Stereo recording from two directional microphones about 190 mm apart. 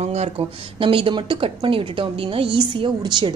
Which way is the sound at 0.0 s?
35° right (ahead or behind).